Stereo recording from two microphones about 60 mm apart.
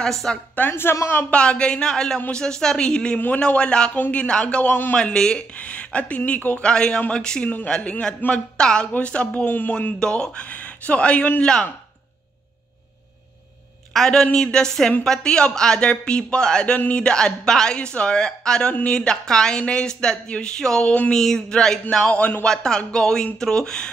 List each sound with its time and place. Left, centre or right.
0.0 s speech: centre
0.6 s speech: left
1.3 s speech: centre
13.9 s a man's voice: centre